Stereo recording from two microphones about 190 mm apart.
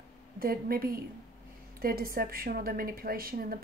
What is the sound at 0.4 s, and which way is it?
Speech, 50° right (ahead or behind).